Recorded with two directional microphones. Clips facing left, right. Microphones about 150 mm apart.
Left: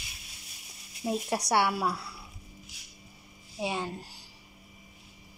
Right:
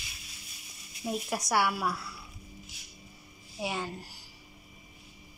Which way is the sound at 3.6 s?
20° left (ahead or behind).